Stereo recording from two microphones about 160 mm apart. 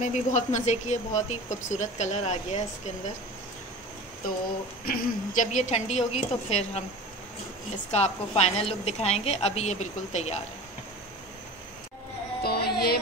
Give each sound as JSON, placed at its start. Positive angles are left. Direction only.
{"t": 0.0, "sound": "speech", "side_deg": 50}
{"t": 4.8, "sound": "speech", "side_deg": 60}
{"t": 7.9, "sound": "a woman's voice", "side_deg": 40}
{"t": 12.4, "sound": "music", "side_deg": 80}